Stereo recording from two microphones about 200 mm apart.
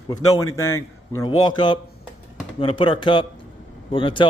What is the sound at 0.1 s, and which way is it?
A man's voice, 20° left (ahead or behind).